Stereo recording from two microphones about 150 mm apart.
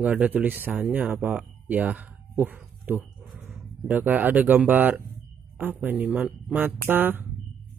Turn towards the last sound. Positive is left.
turn(degrees=-10)  # may be behind; listen again after turning